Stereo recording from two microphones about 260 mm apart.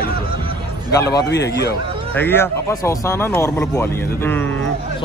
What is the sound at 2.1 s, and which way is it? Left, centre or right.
Speech, centre.